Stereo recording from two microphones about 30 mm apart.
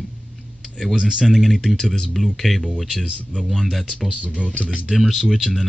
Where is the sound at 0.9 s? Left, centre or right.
Right.